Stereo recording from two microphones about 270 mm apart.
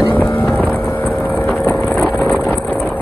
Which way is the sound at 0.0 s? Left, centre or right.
Centre.